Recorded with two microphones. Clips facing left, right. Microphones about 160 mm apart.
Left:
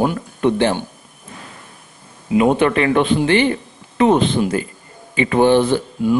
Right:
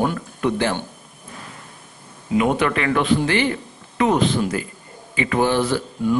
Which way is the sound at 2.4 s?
25° left (ahead or behind).